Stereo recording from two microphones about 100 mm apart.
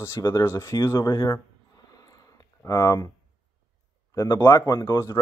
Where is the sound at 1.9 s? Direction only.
35° left (ahead or behind).